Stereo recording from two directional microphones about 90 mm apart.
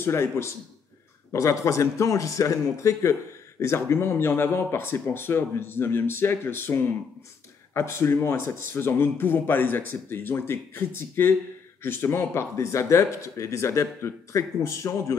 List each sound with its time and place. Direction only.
0.0 s a man's voice: 30° left (ahead or behind)